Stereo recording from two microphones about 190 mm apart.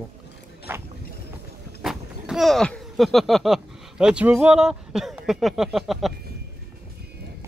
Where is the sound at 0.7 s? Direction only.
10° right (ahead or behind).